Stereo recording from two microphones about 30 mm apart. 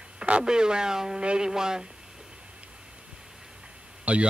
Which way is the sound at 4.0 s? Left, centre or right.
Right.